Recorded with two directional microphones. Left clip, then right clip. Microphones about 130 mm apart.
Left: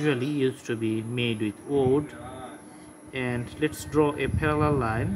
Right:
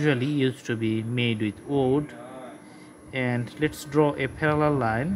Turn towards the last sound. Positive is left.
turn(degrees=-55)  # may be behind; listen again after turning